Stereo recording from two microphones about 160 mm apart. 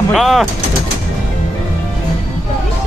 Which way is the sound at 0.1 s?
Centre (ahead or behind).